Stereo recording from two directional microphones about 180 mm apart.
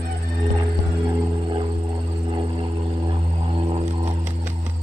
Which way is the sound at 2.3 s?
30° right (ahead or behind).